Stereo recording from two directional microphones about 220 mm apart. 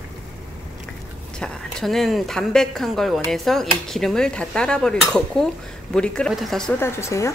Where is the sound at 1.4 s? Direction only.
Centre (ahead or behind).